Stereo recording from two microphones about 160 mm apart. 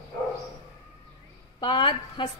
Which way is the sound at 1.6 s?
30° left (ahead or behind).